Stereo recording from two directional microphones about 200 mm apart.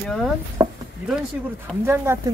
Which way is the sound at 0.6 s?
15° right (ahead or behind).